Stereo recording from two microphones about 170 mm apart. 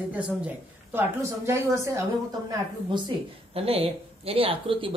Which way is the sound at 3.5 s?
35° right (ahead or behind).